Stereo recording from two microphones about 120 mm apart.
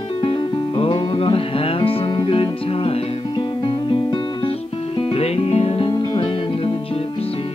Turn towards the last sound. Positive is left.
turn(degrees=45)  # may be behind; listen again after turning